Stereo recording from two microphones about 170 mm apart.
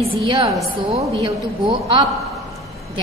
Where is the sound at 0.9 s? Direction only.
30° right (ahead or behind).